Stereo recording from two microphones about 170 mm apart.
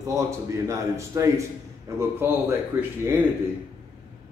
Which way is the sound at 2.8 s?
10° right (ahead or behind).